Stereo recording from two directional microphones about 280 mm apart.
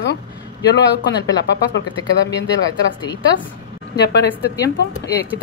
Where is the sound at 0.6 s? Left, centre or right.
Left.